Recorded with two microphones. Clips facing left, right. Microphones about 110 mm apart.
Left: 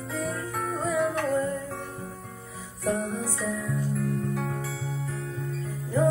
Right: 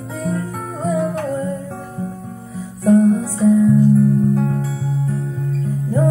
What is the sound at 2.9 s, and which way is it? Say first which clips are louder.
Music: right 15 dB; 40° right (ahead or behind).